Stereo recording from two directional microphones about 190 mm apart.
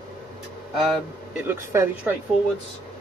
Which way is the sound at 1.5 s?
10° right (ahead or behind).